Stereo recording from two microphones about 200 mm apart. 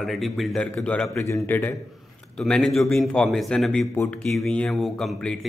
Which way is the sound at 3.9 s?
15° left (ahead or behind).